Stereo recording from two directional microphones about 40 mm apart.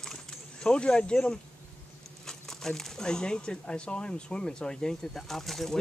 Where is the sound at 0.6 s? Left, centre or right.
Left.